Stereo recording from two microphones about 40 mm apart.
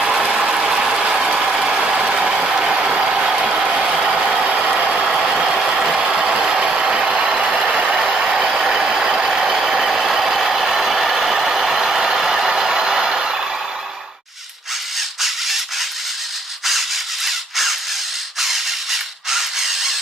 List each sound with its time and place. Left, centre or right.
0.1 s vehicle: centre
1.9 s vehicle: right
2.1 s vehicle: centre
4.5 s vehicle: right
5.0 s ratchet: centre
5.3 s vehicle: centre
10.7 s a sound: centre
15.0 s a sound: centre
16.6 s a sound: centre